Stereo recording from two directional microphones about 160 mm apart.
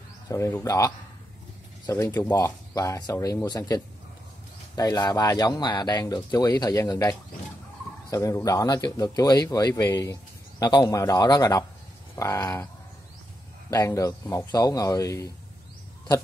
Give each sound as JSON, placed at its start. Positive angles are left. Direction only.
{"t": 0.3, "sound": "speech", "side_deg": 15}
{"t": 13.7, "sound": "speech", "side_deg": 20}